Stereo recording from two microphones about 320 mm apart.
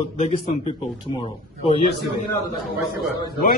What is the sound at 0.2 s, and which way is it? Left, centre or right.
Speech, centre.